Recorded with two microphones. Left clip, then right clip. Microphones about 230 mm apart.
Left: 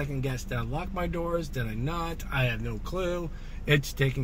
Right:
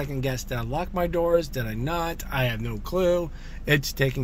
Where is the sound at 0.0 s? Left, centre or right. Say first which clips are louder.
Right 5 dB; right.